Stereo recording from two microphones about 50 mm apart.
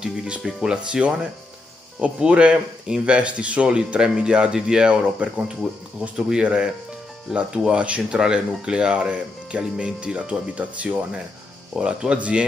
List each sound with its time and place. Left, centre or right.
0.0 s music: centre
0.4 s speech: centre; by 11.0 s right
11.7 s speech: centre